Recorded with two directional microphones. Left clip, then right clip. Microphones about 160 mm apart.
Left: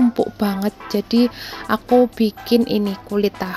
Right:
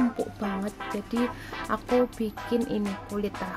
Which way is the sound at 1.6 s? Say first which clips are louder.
Left 10 dB; 35° left (ahead or behind).